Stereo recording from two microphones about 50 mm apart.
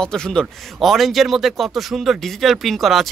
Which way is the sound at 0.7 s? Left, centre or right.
Centre.